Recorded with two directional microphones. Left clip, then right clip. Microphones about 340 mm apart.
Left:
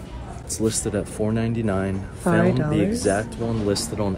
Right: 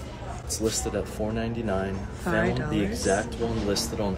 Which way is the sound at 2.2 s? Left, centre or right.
Centre.